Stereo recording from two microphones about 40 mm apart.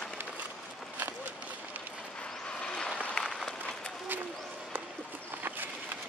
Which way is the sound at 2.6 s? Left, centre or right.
Left.